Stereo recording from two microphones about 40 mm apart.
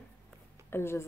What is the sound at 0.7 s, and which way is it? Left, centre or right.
Speech, left.